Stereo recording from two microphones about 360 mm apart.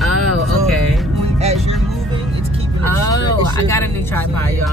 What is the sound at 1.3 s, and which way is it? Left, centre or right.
Speech, centre.